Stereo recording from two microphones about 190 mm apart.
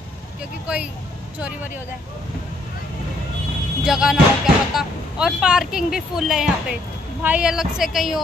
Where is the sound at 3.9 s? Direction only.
Centre (ahead or behind).